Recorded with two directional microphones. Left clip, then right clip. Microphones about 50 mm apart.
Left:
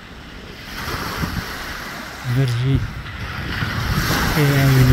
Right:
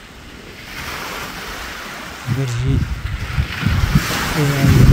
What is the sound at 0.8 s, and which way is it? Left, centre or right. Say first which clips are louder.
Waves: left 1 dB; left.